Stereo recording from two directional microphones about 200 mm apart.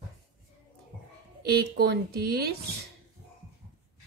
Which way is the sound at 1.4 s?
50° right (ahead or behind).